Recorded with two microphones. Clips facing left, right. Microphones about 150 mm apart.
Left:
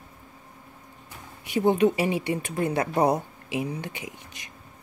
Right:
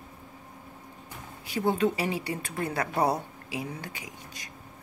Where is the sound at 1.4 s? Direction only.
20° left (ahead or behind).